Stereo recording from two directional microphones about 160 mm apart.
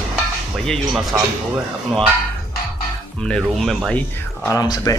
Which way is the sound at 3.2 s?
5° left (ahead or behind).